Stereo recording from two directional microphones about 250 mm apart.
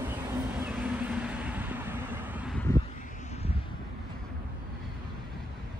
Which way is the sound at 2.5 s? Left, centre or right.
Centre.